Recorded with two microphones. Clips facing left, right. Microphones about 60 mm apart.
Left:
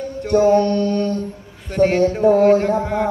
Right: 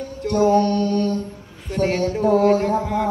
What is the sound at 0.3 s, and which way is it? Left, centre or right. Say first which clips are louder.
Mantra: left 3 dB; left.